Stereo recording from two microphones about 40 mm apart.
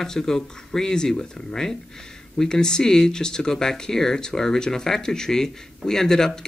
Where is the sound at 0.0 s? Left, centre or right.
Centre.